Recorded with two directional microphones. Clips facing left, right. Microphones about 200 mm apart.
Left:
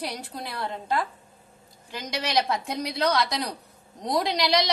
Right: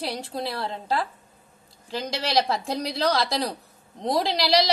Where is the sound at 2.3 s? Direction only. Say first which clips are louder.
Right 2 dB; 30° right (ahead or behind).